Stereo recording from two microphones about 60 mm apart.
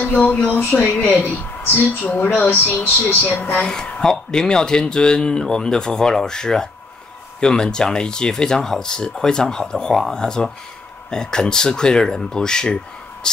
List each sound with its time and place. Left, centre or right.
0.0 s speech: left
1.6 s a woman's voice: left
2.0 s speech: left
3.6 s speech: centre